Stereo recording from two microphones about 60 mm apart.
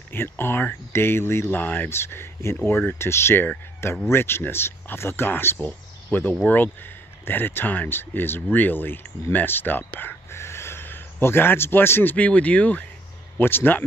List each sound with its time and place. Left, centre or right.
0.1 s speech: left
12.2 s speech: left
13.4 s speech: left